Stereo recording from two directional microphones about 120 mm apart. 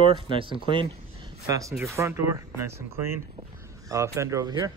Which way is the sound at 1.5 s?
25° right (ahead or behind).